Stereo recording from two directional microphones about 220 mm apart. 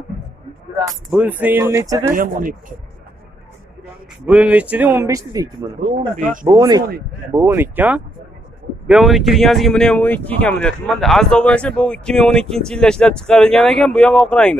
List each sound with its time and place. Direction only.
1.1 s speech: 5° right (ahead or behind)
2.1 s speech: 35° right (ahead or behind)
4.3 s speech: 5° right (ahead or behind)
5.8 s speech: 35° right (ahead or behind)
6.4 s speech: 15° right (ahead or behind); by 14.6 s 5° left (ahead or behind)